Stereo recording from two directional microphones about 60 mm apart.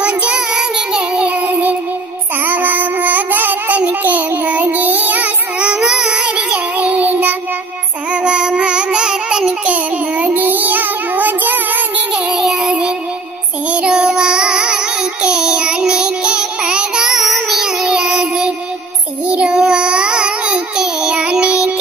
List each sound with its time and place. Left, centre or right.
0.0 s child singing: centre
2.4 s a sound: right
5.8 s child singing: centre; by 7.3 s right
8.1 s music: centre
9.7 s child singing: right
12.3 s a sound: centre
12.6 s child singing: right
15.2 s music: centre
17.8 s child singing: centre
19.2 s a sound: centre